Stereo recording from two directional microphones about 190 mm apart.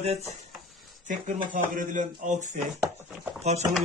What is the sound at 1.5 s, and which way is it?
Speech, 45° right (ahead or behind).